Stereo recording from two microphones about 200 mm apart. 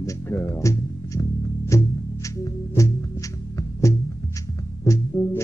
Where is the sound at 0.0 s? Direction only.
15° left (ahead or behind).